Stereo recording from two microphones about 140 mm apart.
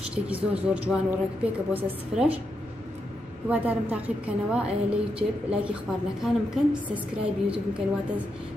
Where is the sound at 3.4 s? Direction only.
10° right (ahead or behind).